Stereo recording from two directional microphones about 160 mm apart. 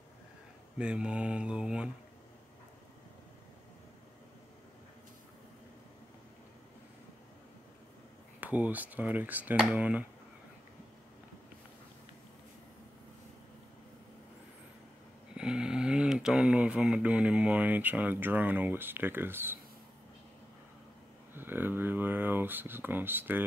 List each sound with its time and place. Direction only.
0.7 s speech: 5° right (ahead or behind)
8.4 s speech: 10° right (ahead or behind)
15.3 s speech: 5° right (ahead or behind)
21.4 s speech: 15° right (ahead or behind)